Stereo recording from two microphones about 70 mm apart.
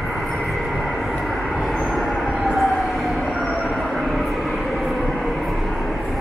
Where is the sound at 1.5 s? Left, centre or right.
Centre.